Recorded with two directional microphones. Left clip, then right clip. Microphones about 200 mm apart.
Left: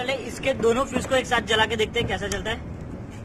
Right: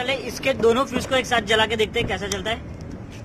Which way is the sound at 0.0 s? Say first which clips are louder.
Right 2 dB; 15° right (ahead or behind).